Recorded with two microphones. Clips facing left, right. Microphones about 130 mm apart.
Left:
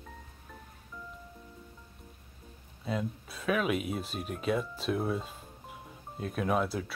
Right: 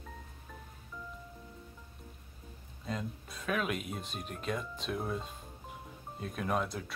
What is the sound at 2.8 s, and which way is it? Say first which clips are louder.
Speech: left 5 dB; 5° left (ahead or behind).